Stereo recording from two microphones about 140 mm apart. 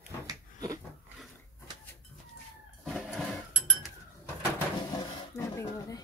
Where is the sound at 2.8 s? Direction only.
Centre (ahead or behind).